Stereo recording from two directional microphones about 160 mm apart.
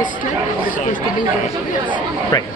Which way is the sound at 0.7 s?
55° left (ahead or behind).